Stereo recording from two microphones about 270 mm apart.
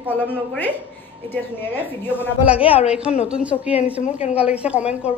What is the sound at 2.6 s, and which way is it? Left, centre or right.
Speech, left.